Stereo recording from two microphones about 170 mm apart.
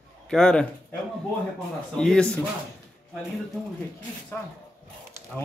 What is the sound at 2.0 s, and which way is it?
Speech, 5° left (ahead or behind).